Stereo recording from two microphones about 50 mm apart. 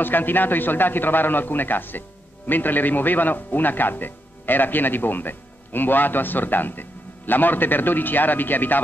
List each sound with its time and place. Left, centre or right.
0.0 s a man's voice: left